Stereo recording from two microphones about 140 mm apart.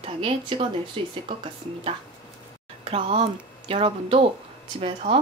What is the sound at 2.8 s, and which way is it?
A woman's voice, 40° right (ahead or behind).